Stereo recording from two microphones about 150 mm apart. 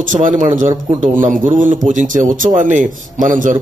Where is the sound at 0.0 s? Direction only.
60° right (ahead or behind).